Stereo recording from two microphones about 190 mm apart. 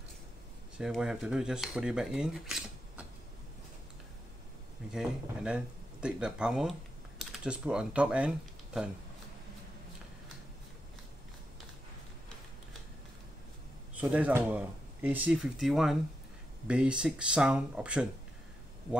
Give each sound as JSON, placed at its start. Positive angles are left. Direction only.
{"t": 0.7, "sound": "speech", "side_deg": -5}
{"t": 4.9, "sound": "speech", "side_deg": -5}
{"t": 13.9, "sound": "speech", "side_deg": -10}